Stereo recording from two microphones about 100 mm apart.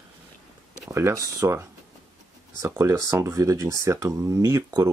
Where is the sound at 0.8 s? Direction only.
30° right (ahead or behind).